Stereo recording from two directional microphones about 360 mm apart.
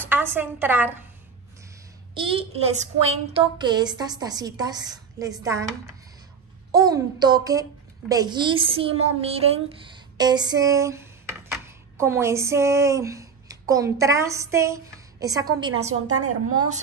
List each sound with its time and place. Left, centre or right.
0.0 s a woman's voice: centre
2.1 s a woman's voice: centre
16.1 s a woman's voice: right